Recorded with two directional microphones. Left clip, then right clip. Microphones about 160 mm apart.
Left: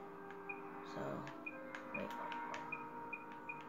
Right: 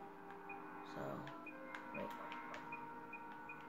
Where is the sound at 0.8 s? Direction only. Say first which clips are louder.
Left 2 dB; 10° right (ahead or behind).